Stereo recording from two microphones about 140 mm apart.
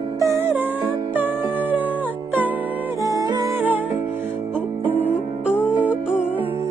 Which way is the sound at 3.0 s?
25° right (ahead or behind).